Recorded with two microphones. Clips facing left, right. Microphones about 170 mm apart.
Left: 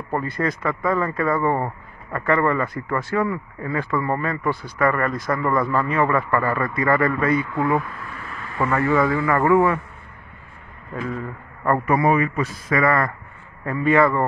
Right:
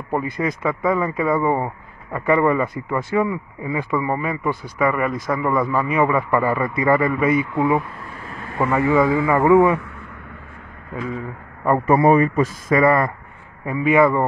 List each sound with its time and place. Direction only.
0.1 s a man's voice: 15° right (ahead or behind)
11.0 s a man's voice: 10° right (ahead or behind)
11.8 s a man's voice: 30° right (ahead or behind)
12.7 s speech: 20° right (ahead or behind)
13.7 s a man's voice: 10° right (ahead or behind)